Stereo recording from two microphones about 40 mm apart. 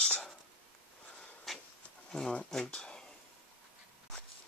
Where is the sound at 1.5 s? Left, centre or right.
Centre.